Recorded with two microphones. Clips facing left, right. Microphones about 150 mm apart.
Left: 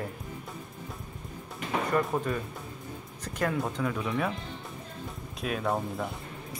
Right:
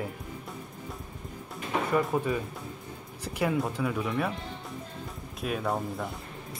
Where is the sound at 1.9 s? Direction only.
5° right (ahead or behind).